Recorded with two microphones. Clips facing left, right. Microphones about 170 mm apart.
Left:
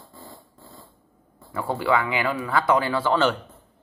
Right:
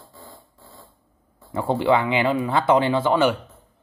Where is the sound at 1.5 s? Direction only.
25° right (ahead or behind).